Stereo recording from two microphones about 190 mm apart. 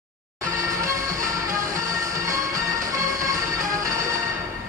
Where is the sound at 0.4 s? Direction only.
15° right (ahead or behind).